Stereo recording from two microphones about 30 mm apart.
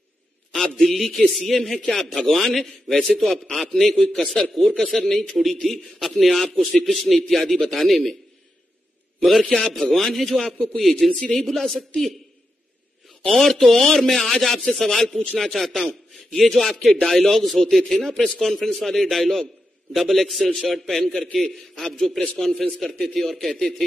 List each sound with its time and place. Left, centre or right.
0.7 s a man's voice: centre
5.5 s a man's voice: centre
9.2 s a man's voice: centre
13.3 s a man's voice: centre